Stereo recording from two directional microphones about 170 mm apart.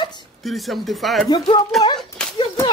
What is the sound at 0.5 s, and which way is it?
Speech, centre (ahead or behind).